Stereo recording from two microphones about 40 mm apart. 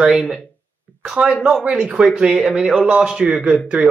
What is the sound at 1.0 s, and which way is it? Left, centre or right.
A man's voice, right.